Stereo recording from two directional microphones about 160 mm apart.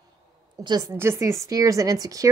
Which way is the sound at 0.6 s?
25° right (ahead or behind).